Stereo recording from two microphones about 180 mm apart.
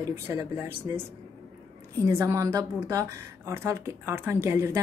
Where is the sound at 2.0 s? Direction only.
15° right (ahead or behind).